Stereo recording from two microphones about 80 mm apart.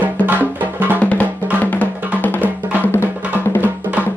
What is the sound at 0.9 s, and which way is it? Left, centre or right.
Music, centre.